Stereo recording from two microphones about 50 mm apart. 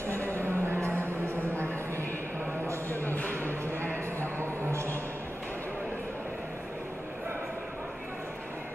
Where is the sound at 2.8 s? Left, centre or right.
Left.